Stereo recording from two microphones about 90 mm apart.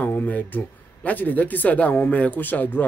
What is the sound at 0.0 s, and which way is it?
Speech, 20° left (ahead or behind).